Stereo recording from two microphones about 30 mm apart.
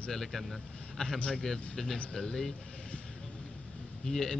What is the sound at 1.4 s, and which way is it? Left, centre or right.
Speech, centre.